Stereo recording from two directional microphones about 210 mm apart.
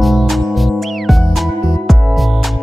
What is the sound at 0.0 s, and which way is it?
Music, centre (ahead or behind).